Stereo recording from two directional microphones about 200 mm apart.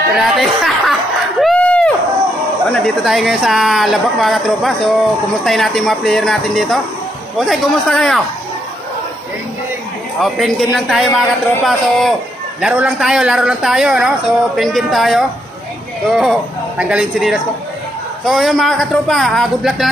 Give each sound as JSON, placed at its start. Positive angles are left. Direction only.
{"t": 0.2, "sound": "a man's voice", "side_deg": 0}
{"t": 1.4, "sound": "a sound", "side_deg": 5}
{"t": 2.7, "sound": "a man's voice", "side_deg": 0}
{"t": 10.2, "sound": "a man's voice", "side_deg": 0}